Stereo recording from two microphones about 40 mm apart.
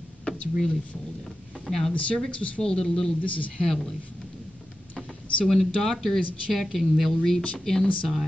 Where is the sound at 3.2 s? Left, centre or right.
Left.